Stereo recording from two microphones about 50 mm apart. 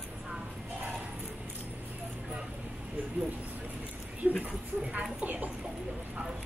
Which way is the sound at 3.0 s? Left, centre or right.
Right.